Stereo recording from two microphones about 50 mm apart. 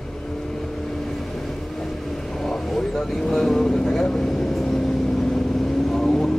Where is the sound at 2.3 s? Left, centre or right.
Centre.